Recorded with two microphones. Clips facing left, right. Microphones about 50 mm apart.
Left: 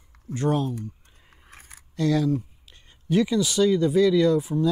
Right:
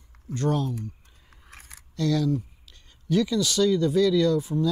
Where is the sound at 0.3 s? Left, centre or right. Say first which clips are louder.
Left 2 dB; centre.